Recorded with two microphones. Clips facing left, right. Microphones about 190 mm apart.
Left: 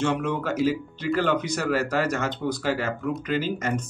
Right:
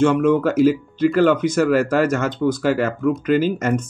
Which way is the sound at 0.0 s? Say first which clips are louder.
Right 10 dB; 50° right (ahead or behind).